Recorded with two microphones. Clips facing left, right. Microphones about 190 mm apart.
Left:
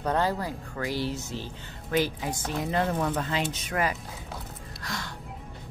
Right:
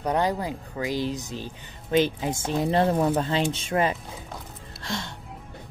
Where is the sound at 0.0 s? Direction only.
15° right (ahead or behind).